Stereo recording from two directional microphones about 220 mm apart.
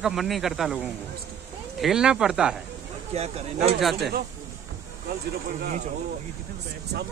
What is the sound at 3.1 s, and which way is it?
Speech, 30° right (ahead or behind).